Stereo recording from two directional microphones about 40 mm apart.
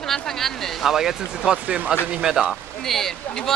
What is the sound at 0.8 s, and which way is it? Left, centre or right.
A man's voice, centre.